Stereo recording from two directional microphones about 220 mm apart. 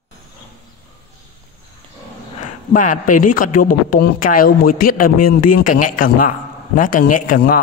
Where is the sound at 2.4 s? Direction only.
35° left (ahead or behind).